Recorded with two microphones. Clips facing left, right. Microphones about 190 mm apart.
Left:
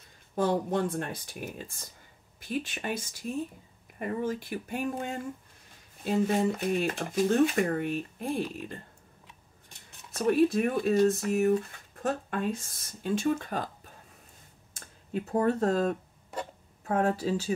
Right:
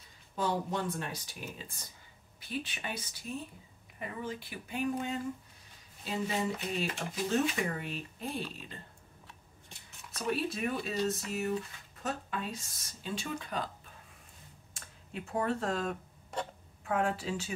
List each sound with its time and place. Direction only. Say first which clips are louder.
0.4 s speech: left 6 dB; 55° left (ahead or behind)
2.4 s speech: left 6 dB; 45° left (ahead or behind)
10.1 s a woman's voice: left 10 dB; 50° left (ahead or behind)